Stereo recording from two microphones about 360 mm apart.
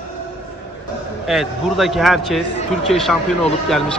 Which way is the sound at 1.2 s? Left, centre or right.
Centre.